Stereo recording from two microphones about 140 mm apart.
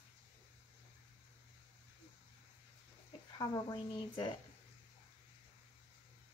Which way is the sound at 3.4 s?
30° left (ahead or behind).